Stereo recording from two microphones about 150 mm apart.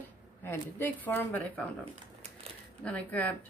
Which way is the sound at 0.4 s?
15° left (ahead or behind).